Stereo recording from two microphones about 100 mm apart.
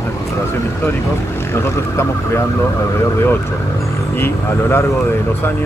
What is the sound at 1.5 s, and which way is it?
Speech, 25° left (ahead or behind).